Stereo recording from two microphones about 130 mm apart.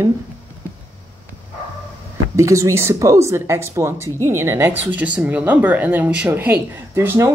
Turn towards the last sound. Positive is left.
turn(degrees=-20)  # may be behind; listen again after turning